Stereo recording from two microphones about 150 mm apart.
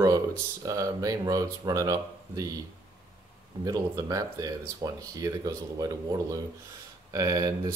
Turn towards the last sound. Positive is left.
turn(degrees=-25)  # may be behind; listen again after turning